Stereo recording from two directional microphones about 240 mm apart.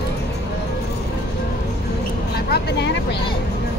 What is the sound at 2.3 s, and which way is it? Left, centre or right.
Vehicle, left.